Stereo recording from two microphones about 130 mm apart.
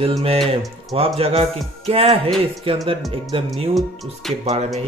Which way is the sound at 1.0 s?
50° right (ahead or behind).